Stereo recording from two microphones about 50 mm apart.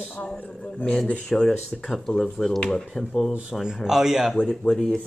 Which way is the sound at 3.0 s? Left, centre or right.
Centre.